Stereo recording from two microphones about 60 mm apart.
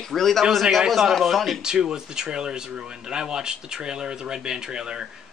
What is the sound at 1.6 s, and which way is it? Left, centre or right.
Speech, centre.